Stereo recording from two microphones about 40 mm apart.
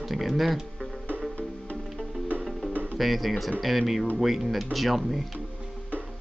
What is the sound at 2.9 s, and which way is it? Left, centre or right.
Speech, centre.